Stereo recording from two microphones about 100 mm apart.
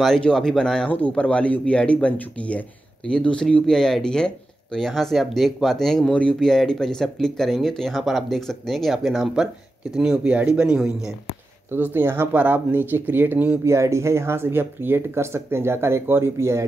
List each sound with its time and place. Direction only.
0.0 s a man's voice: 5° left (ahead or behind)
11.7 s speech: 20° right (ahead or behind)